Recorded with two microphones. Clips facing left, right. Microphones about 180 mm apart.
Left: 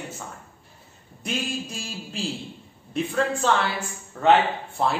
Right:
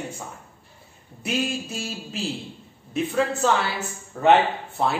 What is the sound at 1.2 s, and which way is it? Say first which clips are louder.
A man's voice: right 3 dB; centre (ahead or behind).